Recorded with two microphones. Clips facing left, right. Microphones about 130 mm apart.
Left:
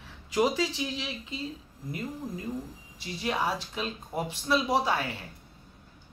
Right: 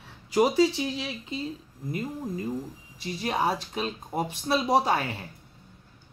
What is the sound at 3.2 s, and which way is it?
Speech, 40° right (ahead or behind).